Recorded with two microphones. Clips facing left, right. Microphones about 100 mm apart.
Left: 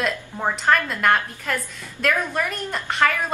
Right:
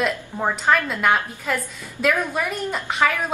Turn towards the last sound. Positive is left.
turn(degrees=-5)  # may be behind; listen again after turning